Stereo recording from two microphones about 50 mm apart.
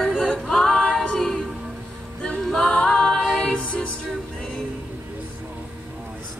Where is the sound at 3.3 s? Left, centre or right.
Centre.